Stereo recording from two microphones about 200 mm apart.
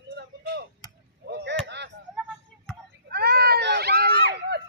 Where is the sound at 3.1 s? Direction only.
50° right (ahead or behind).